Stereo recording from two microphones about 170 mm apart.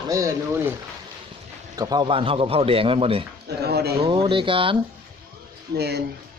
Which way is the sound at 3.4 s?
70° right (ahead or behind).